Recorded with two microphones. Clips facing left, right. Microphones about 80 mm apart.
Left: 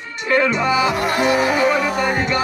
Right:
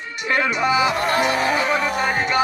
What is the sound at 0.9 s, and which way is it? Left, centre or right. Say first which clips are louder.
Music: even; right.